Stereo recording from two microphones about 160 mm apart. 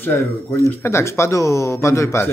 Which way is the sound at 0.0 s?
15° left (ahead or behind).